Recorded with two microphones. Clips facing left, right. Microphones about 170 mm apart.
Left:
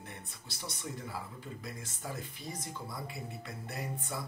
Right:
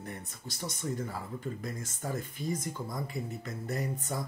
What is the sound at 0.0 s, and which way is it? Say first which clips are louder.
Speech: right 6 dB; 40° right (ahead or behind).